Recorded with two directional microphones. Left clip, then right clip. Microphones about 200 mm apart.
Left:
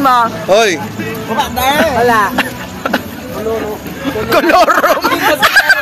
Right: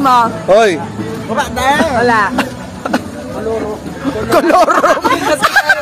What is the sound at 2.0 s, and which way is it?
Speech, 50° left (ahead or behind).